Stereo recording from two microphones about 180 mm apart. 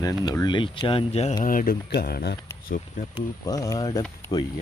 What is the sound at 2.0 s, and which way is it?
Speech, 60° left (ahead or behind).